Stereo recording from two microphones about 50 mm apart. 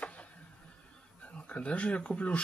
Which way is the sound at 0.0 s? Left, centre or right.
Left.